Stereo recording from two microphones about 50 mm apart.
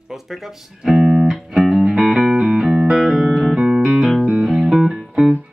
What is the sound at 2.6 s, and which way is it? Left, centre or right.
Music, centre.